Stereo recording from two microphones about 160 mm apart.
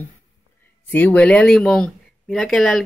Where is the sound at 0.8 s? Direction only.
10° left (ahead or behind).